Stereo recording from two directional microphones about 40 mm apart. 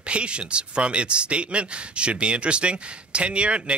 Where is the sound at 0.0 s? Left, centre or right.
Right.